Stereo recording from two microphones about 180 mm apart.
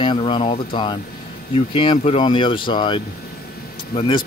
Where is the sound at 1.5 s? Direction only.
30° left (ahead or behind).